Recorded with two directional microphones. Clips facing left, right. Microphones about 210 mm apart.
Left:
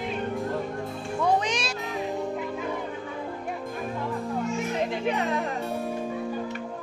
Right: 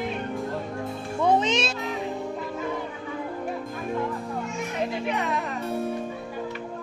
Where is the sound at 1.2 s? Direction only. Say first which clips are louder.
Right 3 dB; 25° right (ahead or behind).